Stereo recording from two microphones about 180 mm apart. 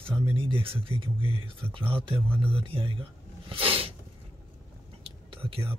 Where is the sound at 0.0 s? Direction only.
30° right (ahead or behind).